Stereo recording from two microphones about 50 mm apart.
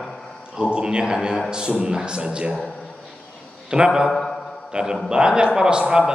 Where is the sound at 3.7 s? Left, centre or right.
Centre.